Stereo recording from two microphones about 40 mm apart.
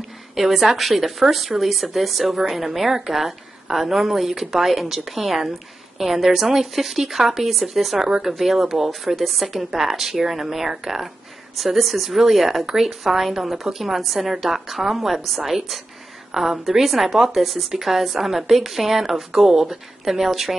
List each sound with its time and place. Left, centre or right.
0.4 s a woman's voice: centre
10.7 s speech: centre
11.5 s a woman's voice: centre